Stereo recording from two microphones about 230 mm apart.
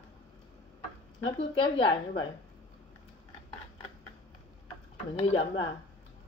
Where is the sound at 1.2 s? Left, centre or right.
Left.